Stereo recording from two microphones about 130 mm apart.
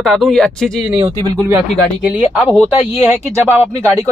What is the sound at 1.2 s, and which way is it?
Speech, 30° right (ahead or behind).